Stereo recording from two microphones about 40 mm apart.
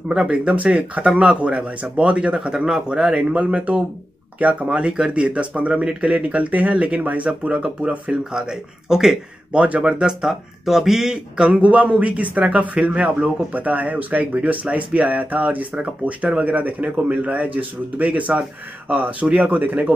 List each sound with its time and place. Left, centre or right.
0.3 s speech: right
3.3 s speech: right
4.6 s speech: right
7.2 s speech: right
8.2 s speech: centre
10.2 s speech: centre
11.3 s speech: right